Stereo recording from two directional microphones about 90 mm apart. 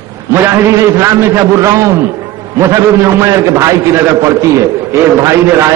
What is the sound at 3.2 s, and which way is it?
A man's voice, 35° right (ahead or behind).